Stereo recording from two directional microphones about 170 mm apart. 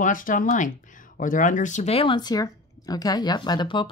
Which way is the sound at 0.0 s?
50° left (ahead or behind).